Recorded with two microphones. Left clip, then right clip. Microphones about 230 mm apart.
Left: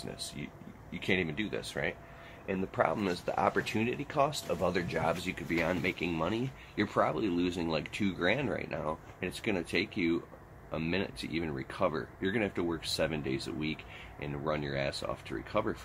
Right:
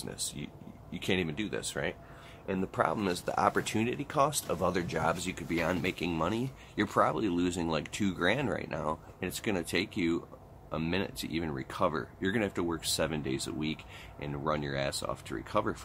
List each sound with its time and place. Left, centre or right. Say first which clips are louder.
0.1 s speech: right 2 dB; centre